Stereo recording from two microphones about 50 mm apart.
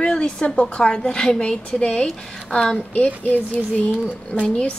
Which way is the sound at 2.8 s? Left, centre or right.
Left.